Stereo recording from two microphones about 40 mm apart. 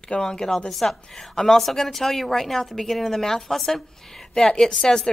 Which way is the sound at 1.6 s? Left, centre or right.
Centre.